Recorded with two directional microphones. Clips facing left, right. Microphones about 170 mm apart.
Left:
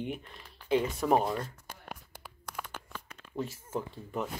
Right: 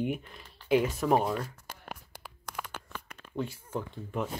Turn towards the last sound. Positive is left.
turn(degrees=0)  # may be behind; listen again after turning